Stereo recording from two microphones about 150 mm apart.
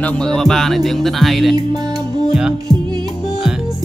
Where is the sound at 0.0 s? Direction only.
5° left (ahead or behind).